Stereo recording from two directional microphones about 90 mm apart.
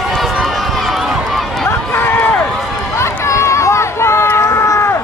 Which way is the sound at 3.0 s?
30° left (ahead or behind).